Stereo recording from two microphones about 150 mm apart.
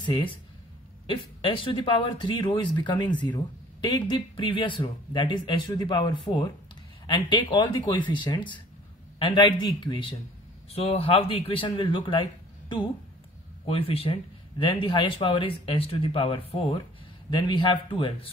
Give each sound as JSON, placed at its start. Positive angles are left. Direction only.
{"t": 1.0, "sound": "speech", "side_deg": 35}
{"t": 10.7, "sound": "speech", "side_deg": 40}